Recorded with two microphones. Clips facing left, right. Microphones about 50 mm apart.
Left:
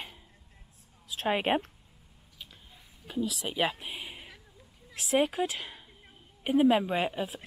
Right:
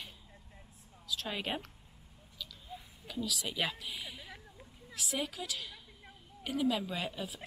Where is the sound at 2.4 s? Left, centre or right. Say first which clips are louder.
Right 1 dB; left.